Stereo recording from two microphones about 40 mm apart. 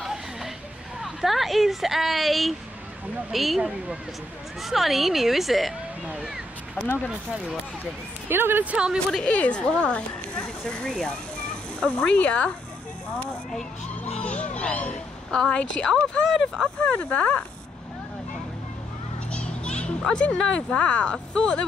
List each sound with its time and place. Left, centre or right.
0.0 s a sound: centre
1.0 s a woman's voice: centre
4.6 s a woman's voice: centre
8.3 s speech: right
8.6 s speech: right
9.2 s speech: left
12.2 s speech: left
14.2 s music: left
15.3 s speech: left
16.3 s speech: centre
16.9 s speech: left
19.3 s children playing: left
20.5 s speech: left